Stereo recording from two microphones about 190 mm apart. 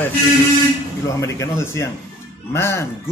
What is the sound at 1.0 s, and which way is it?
A man's voice, 15° left (ahead or behind).